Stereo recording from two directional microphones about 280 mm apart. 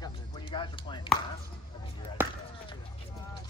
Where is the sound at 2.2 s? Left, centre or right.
Centre.